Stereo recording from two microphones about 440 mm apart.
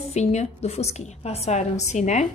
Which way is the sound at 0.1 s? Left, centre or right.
Centre.